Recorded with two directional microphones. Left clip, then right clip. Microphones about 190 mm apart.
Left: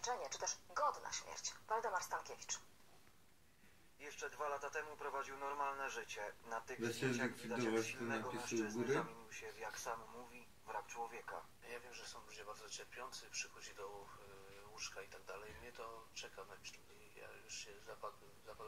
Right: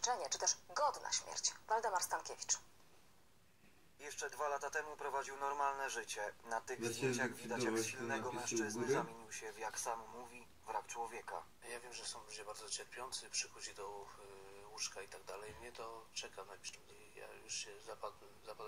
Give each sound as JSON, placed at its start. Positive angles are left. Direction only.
{"t": 0.0, "sound": "speech", "side_deg": -35}
{"t": 4.0, "sound": "speech", "side_deg": -35}